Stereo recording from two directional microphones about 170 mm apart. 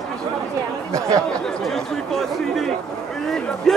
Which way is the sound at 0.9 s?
20° right (ahead or behind).